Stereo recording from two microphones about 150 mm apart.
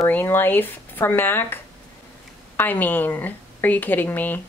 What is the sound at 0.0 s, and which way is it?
Speech, 15° left (ahead or behind).